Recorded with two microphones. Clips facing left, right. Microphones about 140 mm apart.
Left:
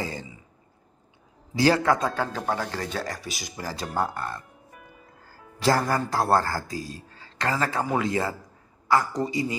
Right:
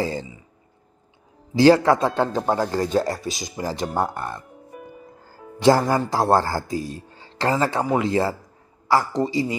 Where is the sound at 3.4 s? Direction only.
20° right (ahead or behind).